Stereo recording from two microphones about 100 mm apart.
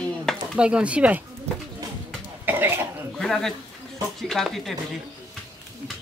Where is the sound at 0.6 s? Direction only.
10° right (ahead or behind).